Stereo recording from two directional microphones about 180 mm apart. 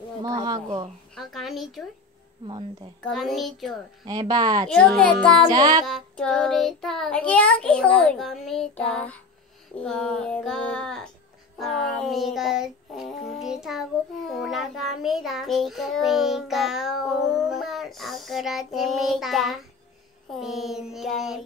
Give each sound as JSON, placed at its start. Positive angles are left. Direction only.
{"t": 0.2, "sound": "speech", "side_deg": -20}
{"t": 0.7, "sound": "a woman's voice", "side_deg": -35}
{"t": 1.1, "sound": "child singing", "side_deg": 0}
{"t": 2.4, "sound": "speech", "side_deg": -25}
{"t": 3.0, "sound": "child singing", "side_deg": 0}
{"t": 4.0, "sound": "speech", "side_deg": -20}
{"t": 4.6, "sound": "child singing", "side_deg": 5}
{"t": 5.5, "sound": "speech", "side_deg": -25}
{"t": 5.9, "sound": "child singing", "side_deg": 5}